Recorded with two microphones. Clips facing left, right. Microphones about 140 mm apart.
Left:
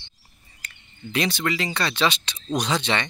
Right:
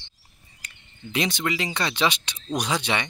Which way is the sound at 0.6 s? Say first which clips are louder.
Left 2 dB; 20° right (ahead or behind).